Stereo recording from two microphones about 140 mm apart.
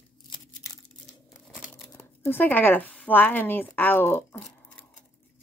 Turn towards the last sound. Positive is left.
turn(degrees=10)  # may be behind; listen again after turning